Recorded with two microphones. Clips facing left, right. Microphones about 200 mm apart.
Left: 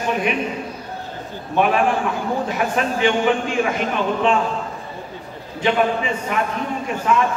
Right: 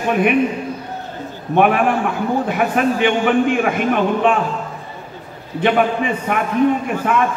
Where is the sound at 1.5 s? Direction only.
55° right (ahead or behind).